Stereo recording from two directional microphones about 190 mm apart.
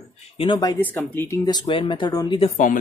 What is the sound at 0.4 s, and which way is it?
Speech, 25° left (ahead or behind).